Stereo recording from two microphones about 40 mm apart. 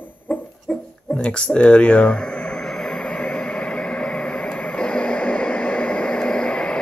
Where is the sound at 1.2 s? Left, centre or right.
Left.